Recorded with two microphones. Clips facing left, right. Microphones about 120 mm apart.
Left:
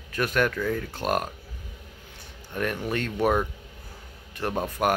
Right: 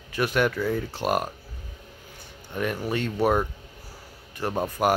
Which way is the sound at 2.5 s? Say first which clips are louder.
Right 1 dB; 5° right (ahead or behind).